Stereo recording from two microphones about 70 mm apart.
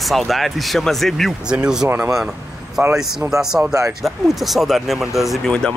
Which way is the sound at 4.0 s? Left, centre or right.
Centre.